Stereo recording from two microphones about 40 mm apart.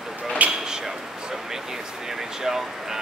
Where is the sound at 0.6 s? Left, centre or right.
Centre.